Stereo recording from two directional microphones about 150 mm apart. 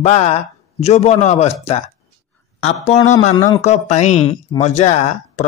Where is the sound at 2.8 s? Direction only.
50° left (ahead or behind).